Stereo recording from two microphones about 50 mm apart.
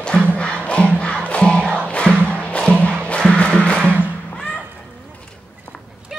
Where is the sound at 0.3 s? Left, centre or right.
Left.